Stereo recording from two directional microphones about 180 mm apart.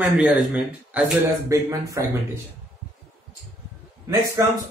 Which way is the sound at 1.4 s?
15° right (ahead or behind).